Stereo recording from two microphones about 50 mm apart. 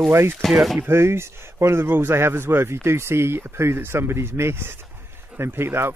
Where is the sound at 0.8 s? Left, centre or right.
Right.